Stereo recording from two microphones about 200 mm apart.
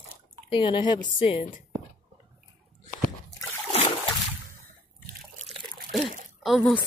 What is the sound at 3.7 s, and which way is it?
Splash, 30° left (ahead or behind).